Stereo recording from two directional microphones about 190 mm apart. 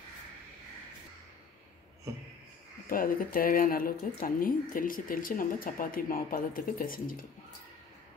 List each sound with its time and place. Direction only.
2.9 s speech: 50° left (ahead or behind)